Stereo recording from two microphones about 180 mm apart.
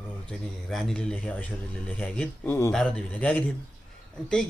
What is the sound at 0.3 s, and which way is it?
Speech, centre (ahead or behind).